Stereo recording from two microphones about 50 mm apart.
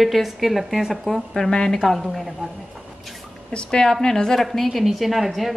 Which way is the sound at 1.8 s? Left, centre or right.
Centre.